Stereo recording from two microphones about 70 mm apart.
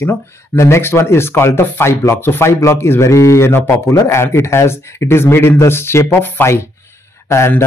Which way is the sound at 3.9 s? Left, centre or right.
Left.